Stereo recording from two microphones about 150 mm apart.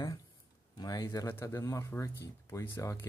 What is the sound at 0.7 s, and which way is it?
Speech, 25° left (ahead or behind).